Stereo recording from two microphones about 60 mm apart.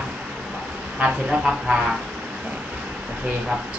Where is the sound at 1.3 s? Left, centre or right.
Centre.